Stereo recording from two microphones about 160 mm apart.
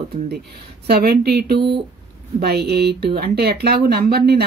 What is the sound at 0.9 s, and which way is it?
Speech, 80° right.